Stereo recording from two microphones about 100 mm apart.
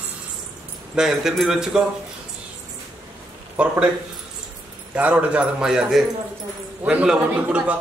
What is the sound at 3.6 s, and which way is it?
Speech, 10° right (ahead or behind).